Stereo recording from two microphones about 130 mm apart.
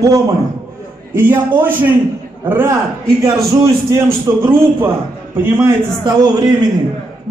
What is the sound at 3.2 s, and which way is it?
A man's voice, 25° right (ahead or behind).